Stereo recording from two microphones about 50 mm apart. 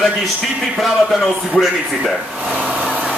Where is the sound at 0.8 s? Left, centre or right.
Centre.